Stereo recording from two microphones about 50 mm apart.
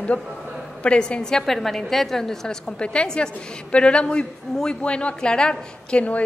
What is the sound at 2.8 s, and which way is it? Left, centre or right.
A man's voice, centre.